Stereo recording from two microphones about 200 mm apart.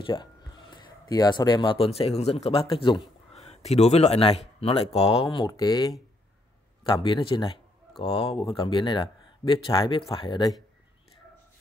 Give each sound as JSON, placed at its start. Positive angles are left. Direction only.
{"t": 0.0, "sound": "speech", "side_deg": 25}